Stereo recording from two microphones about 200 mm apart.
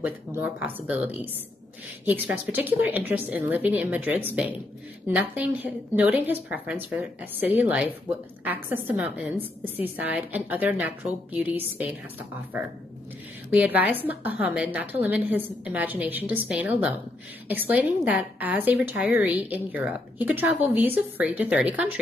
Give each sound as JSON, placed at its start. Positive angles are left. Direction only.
{"t": 0.0, "sound": "a woman's voice", "side_deg": -10}